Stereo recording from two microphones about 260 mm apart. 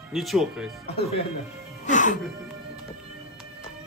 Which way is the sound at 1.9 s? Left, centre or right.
Left.